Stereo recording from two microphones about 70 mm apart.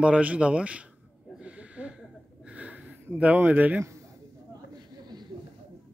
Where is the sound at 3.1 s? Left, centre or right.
Right.